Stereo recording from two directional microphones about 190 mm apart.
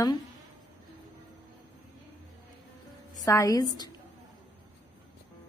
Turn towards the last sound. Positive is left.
turn(degrees=15)  # may be behind; listen again after turning